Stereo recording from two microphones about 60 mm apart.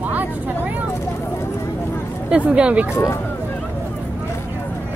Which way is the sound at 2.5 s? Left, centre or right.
Right.